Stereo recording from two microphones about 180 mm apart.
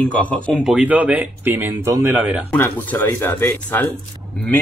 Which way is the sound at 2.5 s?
10° left (ahead or behind).